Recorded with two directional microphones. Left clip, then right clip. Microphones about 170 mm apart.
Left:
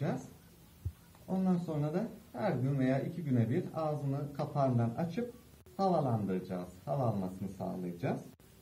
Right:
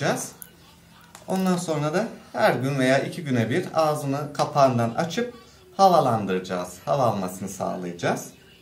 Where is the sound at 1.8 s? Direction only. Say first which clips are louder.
Right 12 dB; 10° right (ahead or behind).